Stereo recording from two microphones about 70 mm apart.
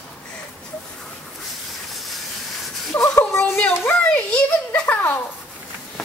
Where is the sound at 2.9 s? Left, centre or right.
Left.